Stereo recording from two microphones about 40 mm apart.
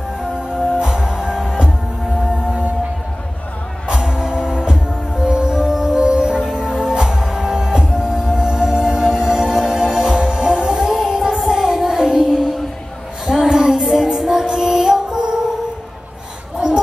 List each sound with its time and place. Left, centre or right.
0.2 s music: right
3.8 s music: centre
11.3 s music: centre
16.5 s a sound: centre